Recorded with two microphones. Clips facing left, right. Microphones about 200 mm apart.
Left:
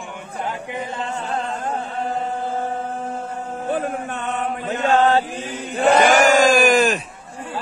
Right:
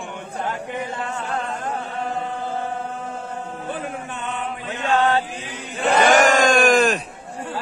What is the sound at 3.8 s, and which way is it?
Chant, 45° left (ahead or behind).